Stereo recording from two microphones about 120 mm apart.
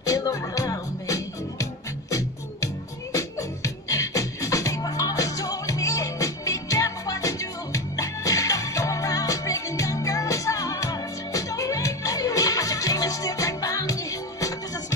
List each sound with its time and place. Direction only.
0.0 s music: 30° left (ahead or behind)